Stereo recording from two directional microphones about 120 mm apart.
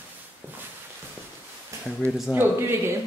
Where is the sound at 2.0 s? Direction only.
25° right (ahead or behind).